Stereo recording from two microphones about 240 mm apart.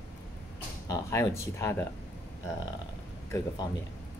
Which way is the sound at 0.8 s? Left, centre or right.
Centre.